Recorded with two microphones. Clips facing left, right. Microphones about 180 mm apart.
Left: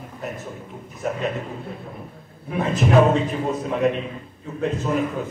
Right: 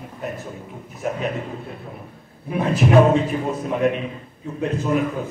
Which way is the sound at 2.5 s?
Centre (ahead or behind).